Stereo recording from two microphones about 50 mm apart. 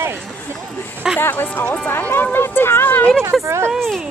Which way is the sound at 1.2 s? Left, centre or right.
Left.